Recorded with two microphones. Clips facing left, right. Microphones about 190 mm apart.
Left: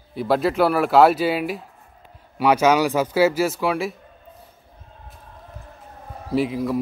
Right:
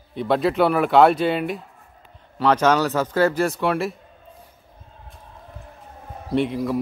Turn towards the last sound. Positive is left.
turn(degrees=0)  # may be behind; listen again after turning